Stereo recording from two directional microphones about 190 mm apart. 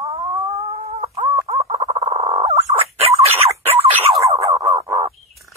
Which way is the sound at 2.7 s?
30° right (ahead or behind).